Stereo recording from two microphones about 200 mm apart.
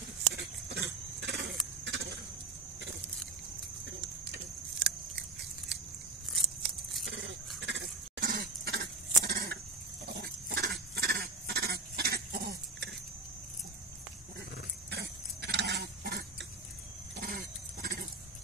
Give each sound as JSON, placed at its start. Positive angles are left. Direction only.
{"t": 0.3, "sound": "pig", "side_deg": -55}
{"t": 1.2, "sound": "vehicle", "side_deg": -55}
{"t": 1.9, "sound": "keys jangling", "side_deg": -55}
{"t": 4.3, "sound": "keys jangling", "side_deg": -60}
{"t": 7.1, "sound": "goat", "side_deg": -65}
{"t": 10.1, "sound": "a sound", "side_deg": -50}
{"t": 14.9, "sound": "goat", "side_deg": -60}